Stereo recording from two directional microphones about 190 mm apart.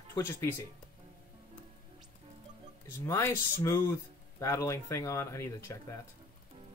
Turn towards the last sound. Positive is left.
turn(degrees=15)  # may be behind; listen again after turning